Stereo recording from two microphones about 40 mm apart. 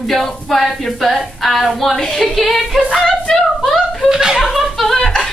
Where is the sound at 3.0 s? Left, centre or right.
Centre.